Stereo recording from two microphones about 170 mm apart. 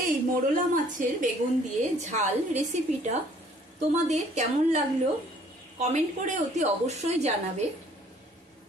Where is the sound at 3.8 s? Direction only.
40° right (ahead or behind).